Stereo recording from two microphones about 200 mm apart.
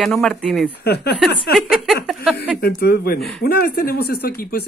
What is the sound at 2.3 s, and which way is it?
Speech, 55° left (ahead or behind).